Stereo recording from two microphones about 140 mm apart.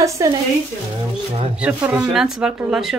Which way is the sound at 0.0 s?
25° right (ahead or behind).